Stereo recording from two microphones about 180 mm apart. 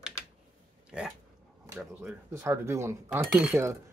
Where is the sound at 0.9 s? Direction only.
5° right (ahead or behind).